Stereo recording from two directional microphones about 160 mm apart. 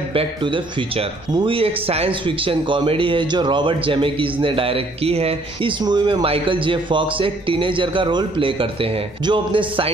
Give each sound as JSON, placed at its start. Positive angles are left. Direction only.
{"t": 0.1, "sound": "speech", "side_deg": -35}